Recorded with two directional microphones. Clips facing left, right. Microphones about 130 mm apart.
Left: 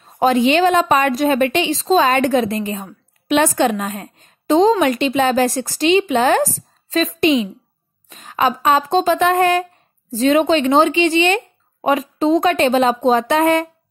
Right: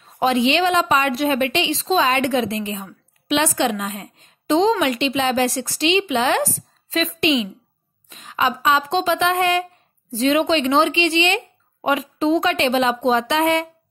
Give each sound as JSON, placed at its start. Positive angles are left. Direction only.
{"t": 0.0, "sound": "a woman's voice", "side_deg": 45}